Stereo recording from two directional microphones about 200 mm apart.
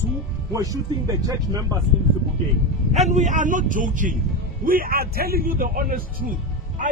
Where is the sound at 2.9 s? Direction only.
35° right (ahead or behind).